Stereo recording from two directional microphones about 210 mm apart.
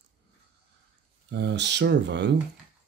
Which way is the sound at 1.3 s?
55° right (ahead or behind).